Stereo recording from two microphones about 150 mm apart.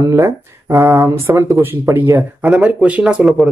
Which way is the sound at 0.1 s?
20° right (ahead or behind).